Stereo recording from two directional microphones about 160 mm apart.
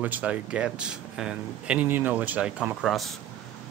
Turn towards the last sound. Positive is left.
turn(degrees=0)  # may be behind; listen again after turning